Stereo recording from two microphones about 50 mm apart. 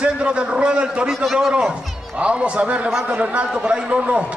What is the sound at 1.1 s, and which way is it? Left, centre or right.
Speech, centre.